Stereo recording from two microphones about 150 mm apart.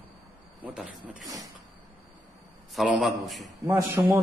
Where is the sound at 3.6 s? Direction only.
15° right (ahead or behind).